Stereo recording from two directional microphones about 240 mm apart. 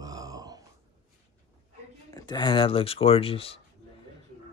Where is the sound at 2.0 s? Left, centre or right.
Centre.